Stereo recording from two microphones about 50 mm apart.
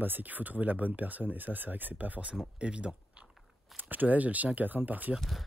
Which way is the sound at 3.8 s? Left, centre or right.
Right.